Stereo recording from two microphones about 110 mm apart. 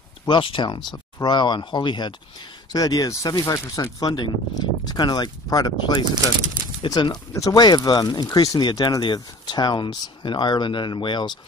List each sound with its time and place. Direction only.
0.3 s speech: 45° left (ahead or behind)